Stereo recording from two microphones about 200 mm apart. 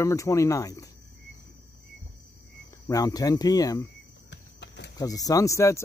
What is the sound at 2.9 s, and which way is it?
Speech, 20° left (ahead or behind).